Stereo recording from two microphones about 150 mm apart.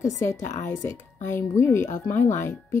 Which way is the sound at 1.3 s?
15° left (ahead or behind).